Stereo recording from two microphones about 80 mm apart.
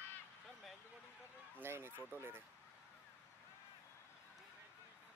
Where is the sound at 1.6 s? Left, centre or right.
Right.